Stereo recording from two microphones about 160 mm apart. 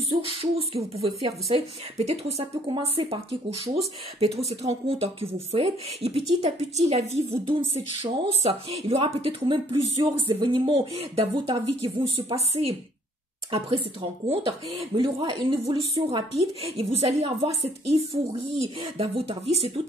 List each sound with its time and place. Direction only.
0.1 s speech: 35° right (ahead or behind)
14.3 s speech: 40° right (ahead or behind)